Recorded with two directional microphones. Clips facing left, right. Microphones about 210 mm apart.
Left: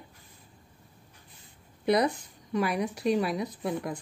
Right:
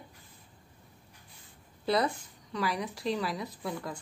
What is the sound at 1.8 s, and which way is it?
Speech, 15° left (ahead or behind).